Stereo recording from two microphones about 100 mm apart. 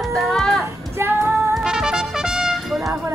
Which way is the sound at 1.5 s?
5° right (ahead or behind).